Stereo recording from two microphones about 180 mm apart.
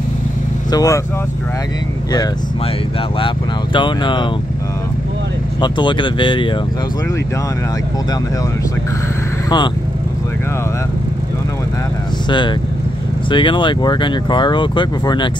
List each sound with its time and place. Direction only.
0.7 s speech: 20° left (ahead or behind)
3.7 s speech: 25° left (ahead or behind)
5.6 s speech: 25° left (ahead or behind)
12.3 s speech: 25° left (ahead or behind)